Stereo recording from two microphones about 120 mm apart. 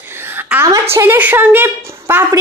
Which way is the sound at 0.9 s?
20° right (ahead or behind).